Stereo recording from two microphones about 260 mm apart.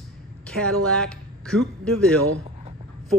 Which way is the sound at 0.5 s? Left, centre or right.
Centre.